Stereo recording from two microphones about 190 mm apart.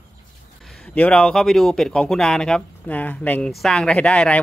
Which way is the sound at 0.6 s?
5° left (ahead or behind).